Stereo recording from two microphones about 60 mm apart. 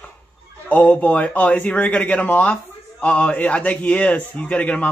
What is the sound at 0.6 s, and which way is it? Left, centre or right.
Speech, left.